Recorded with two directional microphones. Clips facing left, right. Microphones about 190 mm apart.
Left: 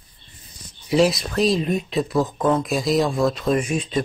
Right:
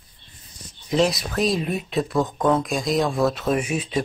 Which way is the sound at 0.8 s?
5° left (ahead or behind).